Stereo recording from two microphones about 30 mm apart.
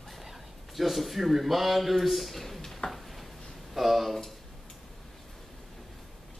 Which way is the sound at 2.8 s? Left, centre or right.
Left.